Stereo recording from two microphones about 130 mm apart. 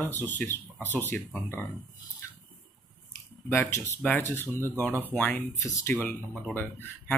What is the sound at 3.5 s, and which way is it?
Speech, 20° left (ahead or behind).